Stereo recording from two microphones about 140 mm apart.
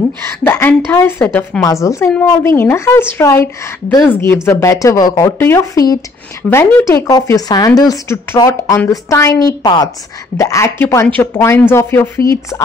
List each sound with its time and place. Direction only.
0.2 s a woman's voice: 15° left (ahead or behind)